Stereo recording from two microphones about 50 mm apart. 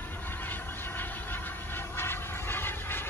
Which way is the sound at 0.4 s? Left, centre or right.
Left.